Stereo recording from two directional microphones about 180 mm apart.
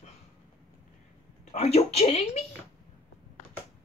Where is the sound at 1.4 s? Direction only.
40° left (ahead or behind).